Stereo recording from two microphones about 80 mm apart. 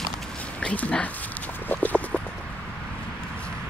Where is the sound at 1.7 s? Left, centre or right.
Left.